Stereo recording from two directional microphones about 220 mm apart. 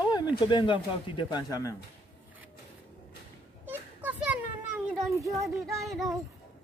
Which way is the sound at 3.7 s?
10° right (ahead or behind).